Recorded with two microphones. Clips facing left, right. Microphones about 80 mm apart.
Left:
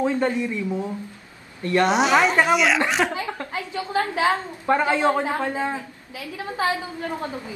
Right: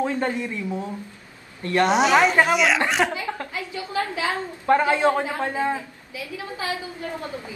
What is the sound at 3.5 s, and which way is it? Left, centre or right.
Speech, left.